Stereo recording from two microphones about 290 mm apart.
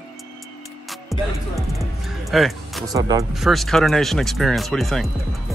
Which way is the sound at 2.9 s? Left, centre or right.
Centre.